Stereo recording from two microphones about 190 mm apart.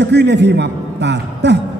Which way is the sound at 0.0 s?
65° right (ahead or behind).